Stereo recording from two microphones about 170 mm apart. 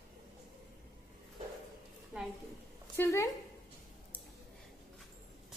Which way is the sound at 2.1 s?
5° right (ahead or behind).